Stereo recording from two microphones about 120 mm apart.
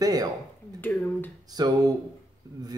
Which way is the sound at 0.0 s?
30° right (ahead or behind).